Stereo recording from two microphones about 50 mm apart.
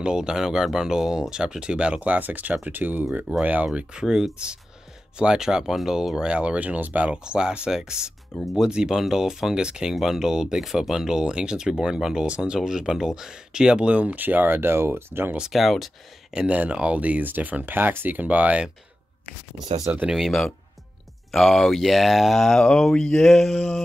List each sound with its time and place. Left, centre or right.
0.0 s speech: centre; by 3.1 s right
3.4 s speech: right
4.0 s speech: centre; by 7.2 s right
7.2 s speech: centre
14.2 s speech: right
15.5 s speech: centre
16.3 s speech: centre; by 18.6 s right
19.9 s speech: right
20.2 s speech: centre